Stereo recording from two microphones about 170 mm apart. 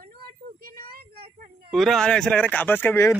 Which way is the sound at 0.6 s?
60° right (ahead or behind).